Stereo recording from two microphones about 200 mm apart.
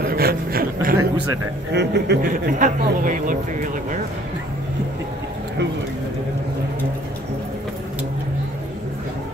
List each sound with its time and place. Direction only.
0.0 s a sound: 50° right (ahead or behind)
1.7 s speech: 55° right (ahead or behind)
2.6 s a man's voice: 40° right (ahead or behind)